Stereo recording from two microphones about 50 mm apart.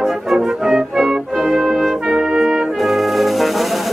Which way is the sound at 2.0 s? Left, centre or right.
Centre.